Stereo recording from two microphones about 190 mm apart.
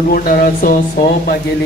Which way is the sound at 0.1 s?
50° left (ahead or behind).